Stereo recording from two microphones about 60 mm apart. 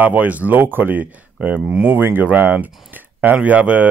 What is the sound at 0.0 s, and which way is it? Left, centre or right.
Speech, right.